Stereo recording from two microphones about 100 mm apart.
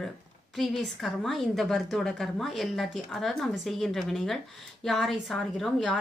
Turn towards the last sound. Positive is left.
turn(degrees=0)  # may be behind; listen again after turning